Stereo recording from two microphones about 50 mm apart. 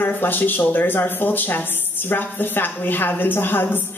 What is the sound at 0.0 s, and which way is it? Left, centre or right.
Speech, left.